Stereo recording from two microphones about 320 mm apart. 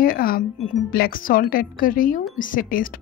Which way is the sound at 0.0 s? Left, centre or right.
Left.